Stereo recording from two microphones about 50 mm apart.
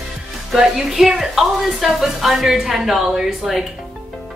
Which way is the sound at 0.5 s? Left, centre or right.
Centre.